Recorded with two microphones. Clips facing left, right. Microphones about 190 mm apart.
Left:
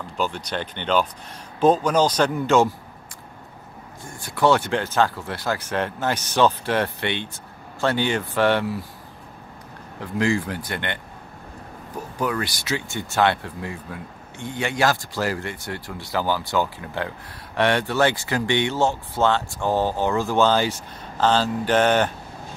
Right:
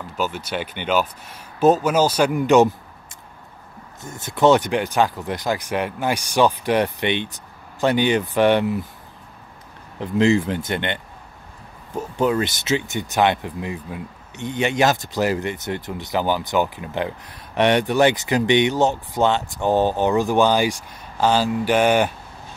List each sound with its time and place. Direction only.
0.2 s speech: 5° right (ahead or behind)
4.0 s speech: 20° right (ahead or behind)
9.9 s speech: 20° right (ahead or behind)
12.2 s speech: 25° right (ahead or behind)